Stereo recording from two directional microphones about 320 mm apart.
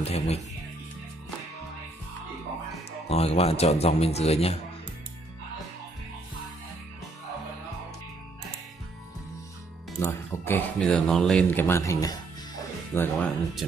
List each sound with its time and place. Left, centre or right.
0.0 s a man's voice: centre
3.1 s a man's voice: centre
9.9 s speech: centre